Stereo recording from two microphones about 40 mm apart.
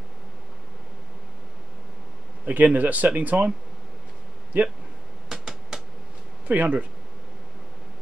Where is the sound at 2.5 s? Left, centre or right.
Right.